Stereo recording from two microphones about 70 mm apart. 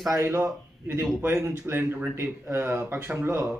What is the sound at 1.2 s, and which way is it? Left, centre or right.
A man's voice, right.